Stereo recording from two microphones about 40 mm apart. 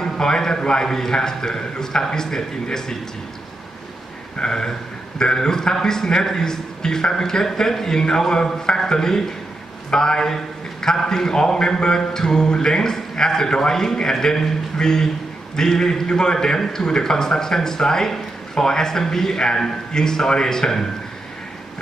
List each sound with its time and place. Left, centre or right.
0.0 s a man's voice: centre
4.4 s a man's voice: centre